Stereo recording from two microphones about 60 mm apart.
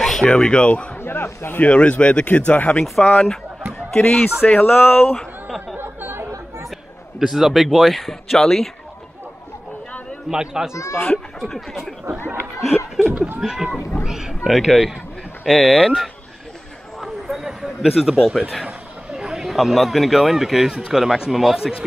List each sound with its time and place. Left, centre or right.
0.0 s a sound: centre
0.3 s speech: centre
0.9 s speech: left
1.6 s speech: left
2.8 s speech: centre
5.8 s chatter: right
7.2 s speech: centre
10.3 s speech: centre
11.3 s speech: centre
12.5 s laughter: centre
13.4 s speech: centre
17.0 s a sound: centre
18.7 s a sound: centre
19.2 s speech: centre